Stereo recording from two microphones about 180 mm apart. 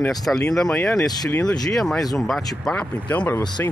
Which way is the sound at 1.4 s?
5° left (ahead or behind).